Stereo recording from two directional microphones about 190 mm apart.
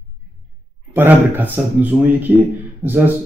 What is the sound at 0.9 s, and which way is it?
Speech, 10° right (ahead or behind).